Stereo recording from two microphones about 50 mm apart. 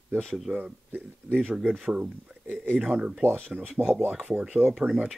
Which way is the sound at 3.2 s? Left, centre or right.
Right.